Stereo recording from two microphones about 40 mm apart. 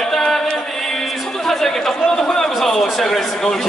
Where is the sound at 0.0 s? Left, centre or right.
Centre.